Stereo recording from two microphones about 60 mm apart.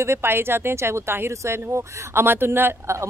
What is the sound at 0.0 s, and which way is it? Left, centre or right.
Speech, right.